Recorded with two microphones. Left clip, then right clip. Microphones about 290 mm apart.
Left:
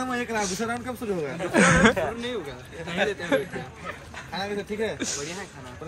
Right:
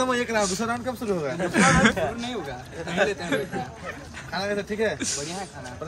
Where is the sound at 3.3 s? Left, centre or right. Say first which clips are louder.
Left 2 dB; centre.